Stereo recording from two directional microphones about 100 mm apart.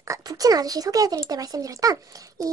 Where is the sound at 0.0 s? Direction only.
35° right (ahead or behind).